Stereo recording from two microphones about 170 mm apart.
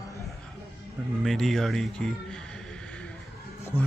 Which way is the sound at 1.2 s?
Centre (ahead or behind).